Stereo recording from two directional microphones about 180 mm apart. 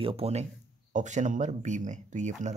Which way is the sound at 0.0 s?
35° right (ahead or behind).